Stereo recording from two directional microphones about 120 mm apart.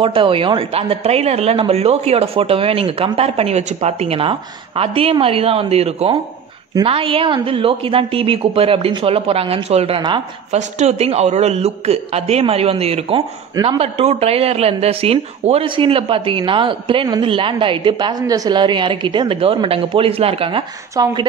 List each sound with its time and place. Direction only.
0.0 s a man's voice: 50° right (ahead or behind)
10.5 s a man's voice: 65° right (ahead or behind); by 20.6 s 50° right (ahead or behind)
20.9 s speech: 35° right (ahead or behind)